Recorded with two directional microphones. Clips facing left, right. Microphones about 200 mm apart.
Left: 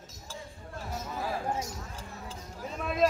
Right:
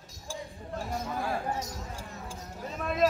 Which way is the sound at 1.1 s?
Centre (ahead or behind).